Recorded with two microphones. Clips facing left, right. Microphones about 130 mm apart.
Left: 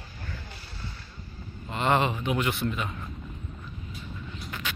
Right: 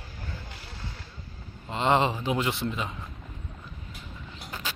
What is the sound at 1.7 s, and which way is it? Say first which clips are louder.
Speech: right 1 dB; 25° right (ahead or behind).